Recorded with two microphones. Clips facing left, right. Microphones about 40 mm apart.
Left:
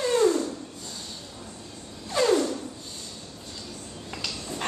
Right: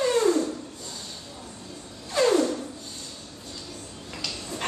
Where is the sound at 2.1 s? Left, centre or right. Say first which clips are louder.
Right 1 dB; centre.